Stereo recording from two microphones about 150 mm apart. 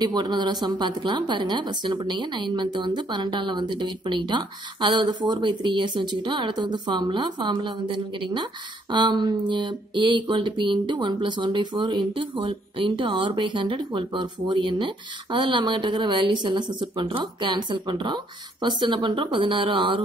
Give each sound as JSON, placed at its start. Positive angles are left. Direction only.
{"t": 0.0, "sound": "a woman's voice", "side_deg": -30}